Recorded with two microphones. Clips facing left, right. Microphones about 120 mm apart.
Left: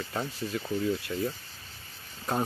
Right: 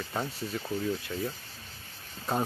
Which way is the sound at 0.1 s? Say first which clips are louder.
Left 1 dB; centre (ahead or behind).